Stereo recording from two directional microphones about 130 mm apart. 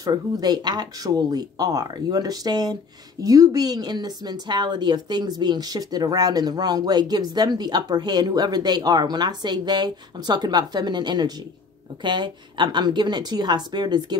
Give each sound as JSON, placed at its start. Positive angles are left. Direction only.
{"t": 0.0, "sound": "speech", "side_deg": -30}